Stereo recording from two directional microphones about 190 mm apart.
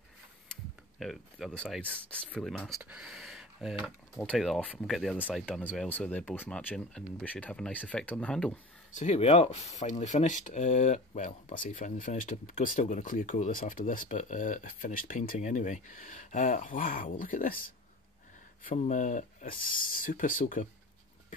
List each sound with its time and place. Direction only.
0.9 s speech: centre (ahead or behind)
8.9 s speech: 35° left (ahead or behind)